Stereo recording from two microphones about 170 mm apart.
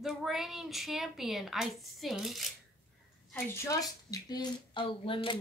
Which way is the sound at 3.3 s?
15° left (ahead or behind).